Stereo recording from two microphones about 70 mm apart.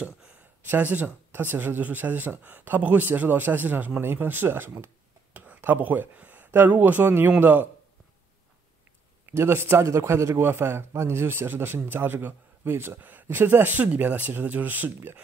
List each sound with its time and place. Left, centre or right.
0.7 s speech: right
9.3 s a man's voice: right